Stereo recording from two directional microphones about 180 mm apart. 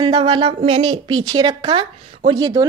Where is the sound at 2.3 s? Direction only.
20° right (ahead or behind).